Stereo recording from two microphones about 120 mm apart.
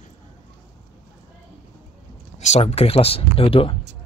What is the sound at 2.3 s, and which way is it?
Speech, 70° left (ahead or behind).